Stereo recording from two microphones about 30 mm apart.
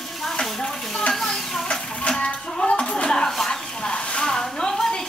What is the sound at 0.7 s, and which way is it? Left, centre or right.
Dishes, centre.